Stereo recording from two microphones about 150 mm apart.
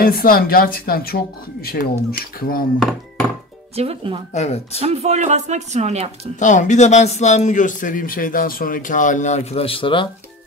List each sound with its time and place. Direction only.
0.0 s speech: 75° left (ahead or behind)
3.7 s speech: 40° right (ahead or behind)
4.3 s speech: 50° left (ahead or behind)
4.7 s a woman's voice: 45° right (ahead or behind)
6.4 s a man's voice: 55° left (ahead or behind); by 10.0 s 35° left (ahead or behind)